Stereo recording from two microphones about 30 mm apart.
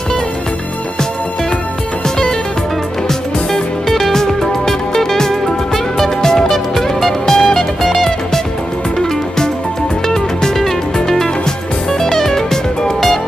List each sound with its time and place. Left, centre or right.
4.1 s music: centre
11.9 s music: centre